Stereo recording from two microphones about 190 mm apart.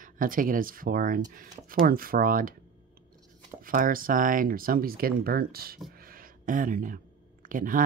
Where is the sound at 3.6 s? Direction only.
45° right (ahead or behind).